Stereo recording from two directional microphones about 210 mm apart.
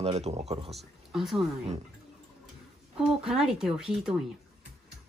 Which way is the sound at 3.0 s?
Centre (ahead or behind).